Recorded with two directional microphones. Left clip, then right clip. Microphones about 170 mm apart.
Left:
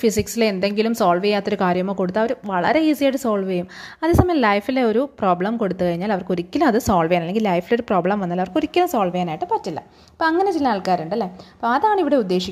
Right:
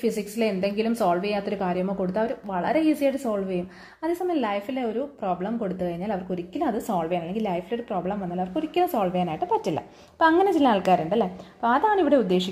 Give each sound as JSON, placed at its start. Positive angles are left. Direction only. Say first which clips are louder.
{"t": 0.0, "sound": "a woman's voice", "louder": "left 6 dB", "side_deg": 40}
{"t": 8.9, "sound": "speech", "louder": "left 4 dB", "side_deg": 30}
{"t": 9.5, "sound": "a woman's voice", "louder": "left 2 dB", "side_deg": 10}